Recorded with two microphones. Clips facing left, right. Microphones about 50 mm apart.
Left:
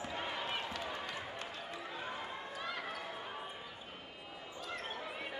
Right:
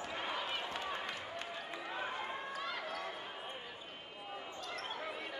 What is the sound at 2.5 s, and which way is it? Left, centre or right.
Basketball bounce, centre.